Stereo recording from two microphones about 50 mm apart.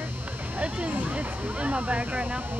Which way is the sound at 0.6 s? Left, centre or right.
Right.